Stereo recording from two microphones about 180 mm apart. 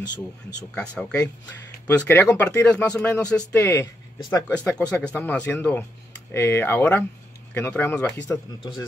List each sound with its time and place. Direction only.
1.9 s speech: 10° left (ahead or behind)
4.6 s speech: 5° left (ahead or behind)
8.3 s speech: 20° left (ahead or behind)